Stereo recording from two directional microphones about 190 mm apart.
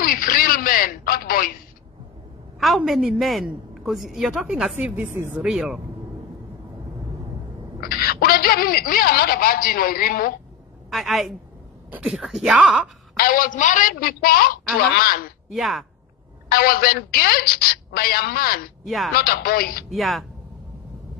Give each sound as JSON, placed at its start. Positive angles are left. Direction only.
{"t": 0.0, "sound": "telephone", "side_deg": 50}
{"t": 2.6, "sound": "a woman's voice", "side_deg": 0}
{"t": 7.8, "sound": "a woman's voice", "side_deg": 50}
{"t": 10.9, "sound": "a woman's voice", "side_deg": 0}
{"t": 13.2, "sound": "a woman's voice", "side_deg": 45}
{"t": 15.5, "sound": "a woman's voice", "side_deg": 0}
{"t": 16.4, "sound": "a woman's voice", "side_deg": 55}
{"t": 19.9, "sound": "a woman's voice", "side_deg": 0}